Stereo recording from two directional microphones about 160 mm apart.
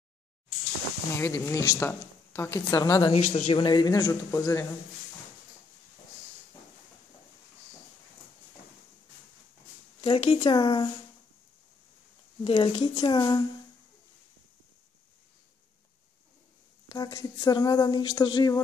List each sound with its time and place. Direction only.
1.1 s speech: 15° left (ahead or behind)
3.2 s speech: 40° left (ahead or behind); by 4.6 s 20° left (ahead or behind)
10.0 s speech: 35° left (ahead or behind)
12.4 s speech: 35° left (ahead or behind)
16.9 s speech: 25° left (ahead or behind)